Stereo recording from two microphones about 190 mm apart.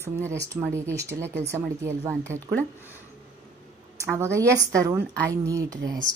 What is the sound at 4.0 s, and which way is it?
Speech, 15° right (ahead or behind).